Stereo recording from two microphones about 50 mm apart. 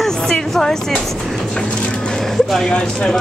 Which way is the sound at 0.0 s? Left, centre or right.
Centre.